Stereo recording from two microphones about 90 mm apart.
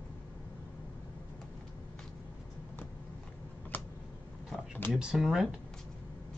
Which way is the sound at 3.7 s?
20° left (ahead or behind).